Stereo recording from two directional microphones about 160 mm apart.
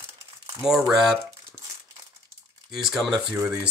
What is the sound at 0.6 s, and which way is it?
Speech, 5° right (ahead or behind).